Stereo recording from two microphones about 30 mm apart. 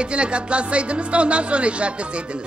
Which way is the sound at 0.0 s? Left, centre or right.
Right.